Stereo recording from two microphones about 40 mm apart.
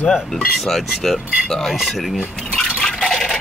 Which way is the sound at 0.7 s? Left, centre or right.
Centre.